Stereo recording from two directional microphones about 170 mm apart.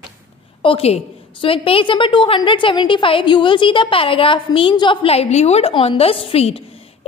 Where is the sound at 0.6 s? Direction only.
35° left (ahead or behind).